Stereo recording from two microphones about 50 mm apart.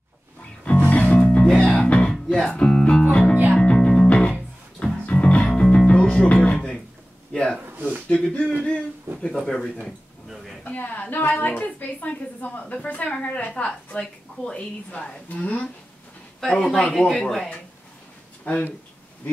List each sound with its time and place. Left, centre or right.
0.7 s music: left
7.6 s a sound: right
8.1 s a man's voice: left
10.6 s a woman's voice: left
13.1 s a woman's voice: centre
15.2 s a woman's voice: left
16.4 s a man's voice: centre
18.5 s a woman's voice: left